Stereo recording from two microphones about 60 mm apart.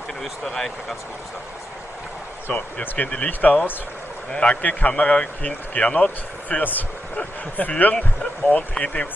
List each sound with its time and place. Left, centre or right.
0.2 s speech: centre
2.4 s a man's voice: left